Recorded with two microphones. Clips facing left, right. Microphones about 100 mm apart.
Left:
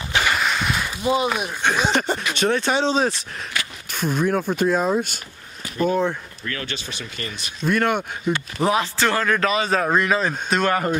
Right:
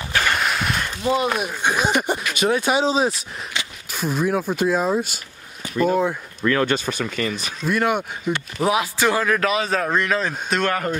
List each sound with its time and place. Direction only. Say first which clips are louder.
0.2 s a sound: even; centre (ahead or behind)
1.6 s speech: left 1 dB; 10° right (ahead or behind)
3.6 s a sound: left 1 dB; 20° right (ahead or behind)
3.9 s speech: even; centre (ahead or behind)
6.6 s speech: right 11 dB; 50° right (ahead or behind)
7.6 s speech: even; 5° right (ahead or behind)